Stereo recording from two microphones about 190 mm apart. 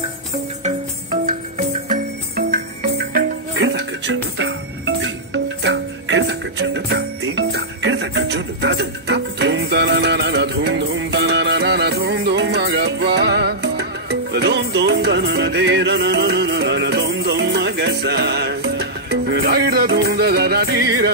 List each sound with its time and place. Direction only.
1.2 s music: 40° right (ahead or behind)
3.5 s music: 70° right (ahead or behind)